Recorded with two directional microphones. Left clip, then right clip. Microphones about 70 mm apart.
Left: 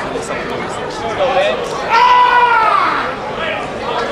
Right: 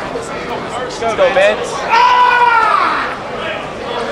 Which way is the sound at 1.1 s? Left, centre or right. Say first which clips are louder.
Right 4 dB; right.